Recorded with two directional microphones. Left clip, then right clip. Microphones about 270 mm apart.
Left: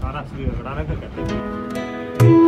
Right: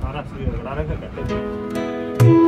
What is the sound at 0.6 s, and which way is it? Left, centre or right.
Speech, centre.